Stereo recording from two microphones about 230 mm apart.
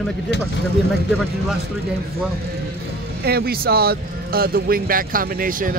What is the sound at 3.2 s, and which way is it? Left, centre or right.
Speech, right.